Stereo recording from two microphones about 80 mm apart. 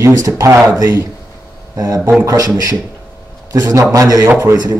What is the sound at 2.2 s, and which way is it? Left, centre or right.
Speech, right.